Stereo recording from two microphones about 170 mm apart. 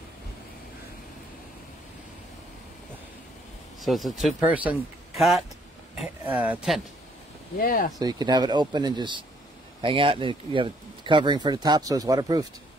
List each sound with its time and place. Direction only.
3.8 s speech: centre (ahead or behind)
7.5 s speech: 60° left (ahead or behind)
8.0 s speech: 25° right (ahead or behind)